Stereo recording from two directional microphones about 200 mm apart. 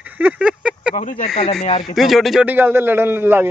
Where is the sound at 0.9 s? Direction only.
40° left (ahead or behind).